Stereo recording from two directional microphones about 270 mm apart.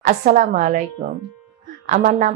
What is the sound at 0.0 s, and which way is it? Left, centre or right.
Speech, right.